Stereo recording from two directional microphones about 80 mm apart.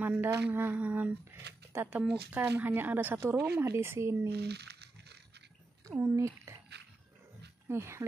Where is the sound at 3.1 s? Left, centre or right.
Right.